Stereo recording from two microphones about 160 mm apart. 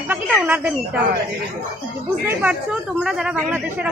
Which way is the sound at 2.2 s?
10° right (ahead or behind).